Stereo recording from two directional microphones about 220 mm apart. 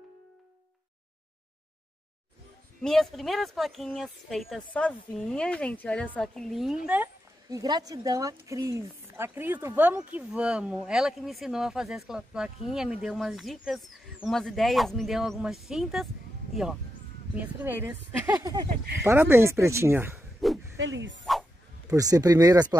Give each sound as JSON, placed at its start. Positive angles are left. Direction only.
{"t": 2.8, "sound": "speech", "side_deg": 0}
{"t": 6.9, "sound": "speech", "side_deg": -10}
{"t": 17.4, "sound": "a woman's voice", "side_deg": -10}
{"t": 20.4, "sound": "a sound", "side_deg": 0}
{"t": 20.7, "sound": "speech", "side_deg": -55}
{"t": 21.9, "sound": "a woman's voice", "side_deg": -15}